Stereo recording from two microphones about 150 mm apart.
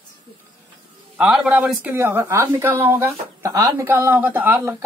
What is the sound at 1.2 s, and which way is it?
Speech, 5° right (ahead or behind).